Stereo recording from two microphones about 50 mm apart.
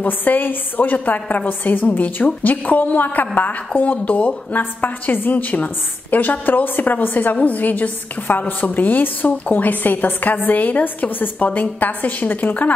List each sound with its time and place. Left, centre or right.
0.0 s a woman's voice: left